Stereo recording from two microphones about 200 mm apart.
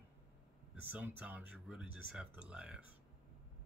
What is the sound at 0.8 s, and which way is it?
Speech, 10° right (ahead or behind).